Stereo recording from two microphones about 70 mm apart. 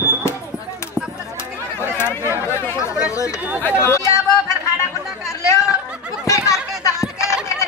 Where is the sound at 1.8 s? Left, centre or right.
Left.